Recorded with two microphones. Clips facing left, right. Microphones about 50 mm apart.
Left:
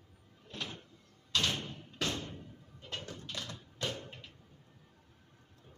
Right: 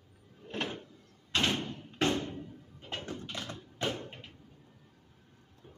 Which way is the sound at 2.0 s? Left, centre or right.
Right.